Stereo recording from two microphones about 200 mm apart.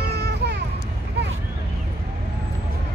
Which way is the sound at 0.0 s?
55° right (ahead or behind).